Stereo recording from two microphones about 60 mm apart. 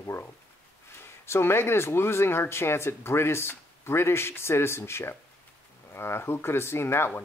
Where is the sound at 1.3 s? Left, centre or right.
Left.